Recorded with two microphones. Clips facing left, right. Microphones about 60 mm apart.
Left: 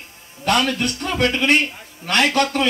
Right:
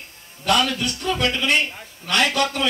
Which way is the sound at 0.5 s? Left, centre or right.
Left.